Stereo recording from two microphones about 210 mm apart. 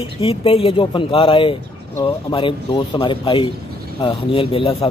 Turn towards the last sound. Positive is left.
turn(degrees=25)  # may be behind; listen again after turning